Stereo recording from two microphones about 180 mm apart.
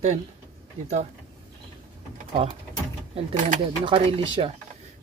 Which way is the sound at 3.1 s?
45° right (ahead or behind).